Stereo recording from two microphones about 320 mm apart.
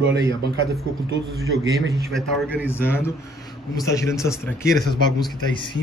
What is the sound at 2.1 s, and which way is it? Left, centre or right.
Speech, centre.